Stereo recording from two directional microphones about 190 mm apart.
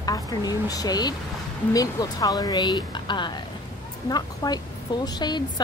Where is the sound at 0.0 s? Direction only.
20° left (ahead or behind).